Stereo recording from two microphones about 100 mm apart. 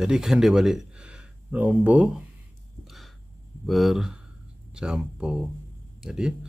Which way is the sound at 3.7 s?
Centre (ahead or behind).